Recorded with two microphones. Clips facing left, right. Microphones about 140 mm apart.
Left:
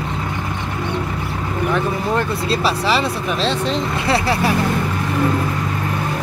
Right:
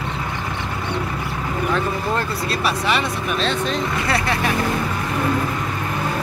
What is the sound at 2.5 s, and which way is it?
Speech, 30° left (ahead or behind).